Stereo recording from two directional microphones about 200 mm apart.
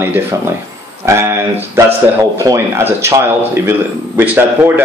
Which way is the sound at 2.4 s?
15° right (ahead or behind).